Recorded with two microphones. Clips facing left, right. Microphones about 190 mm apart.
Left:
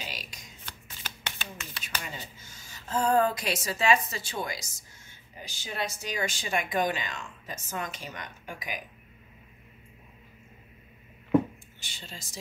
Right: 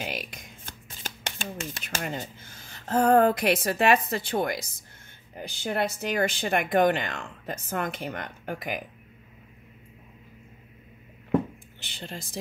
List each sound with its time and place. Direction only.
0.0 s shuffling cards: 55° right (ahead or behind)
5.4 s speech: 60° right (ahead or behind)
11.8 s speech: 60° right (ahead or behind)